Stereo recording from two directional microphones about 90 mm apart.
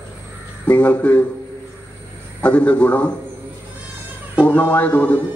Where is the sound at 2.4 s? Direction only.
15° left (ahead or behind).